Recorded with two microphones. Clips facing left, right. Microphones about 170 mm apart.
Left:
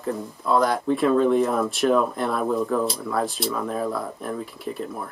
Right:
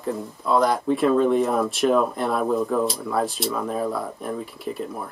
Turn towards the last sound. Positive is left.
turn(degrees=0)  # may be behind; listen again after turning